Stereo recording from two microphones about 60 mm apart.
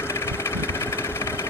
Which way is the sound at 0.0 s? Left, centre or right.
Left.